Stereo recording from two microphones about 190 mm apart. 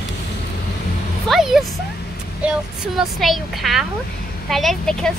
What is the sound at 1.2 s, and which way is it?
Speech, centre (ahead or behind).